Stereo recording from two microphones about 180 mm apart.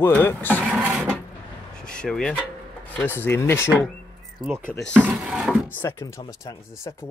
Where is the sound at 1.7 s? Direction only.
5° left (ahead or behind).